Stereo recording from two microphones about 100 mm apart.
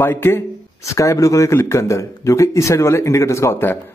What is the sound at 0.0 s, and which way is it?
Speech, 20° left (ahead or behind).